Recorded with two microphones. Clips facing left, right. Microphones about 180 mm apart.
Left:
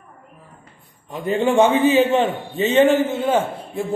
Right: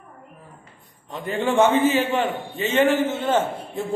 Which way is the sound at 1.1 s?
15° left (ahead or behind).